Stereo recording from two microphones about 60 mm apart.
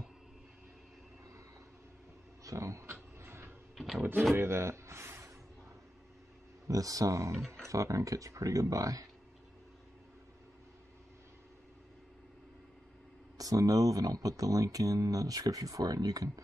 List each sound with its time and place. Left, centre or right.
2.4 s speech: right
2.9 s a sound: right
6.7 s speech: right
7.3 s speech: centre
7.6 s speech: right
13.4 s speech: right